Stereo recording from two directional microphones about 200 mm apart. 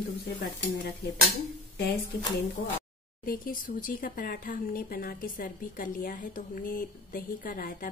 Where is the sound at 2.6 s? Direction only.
50° left (ahead or behind).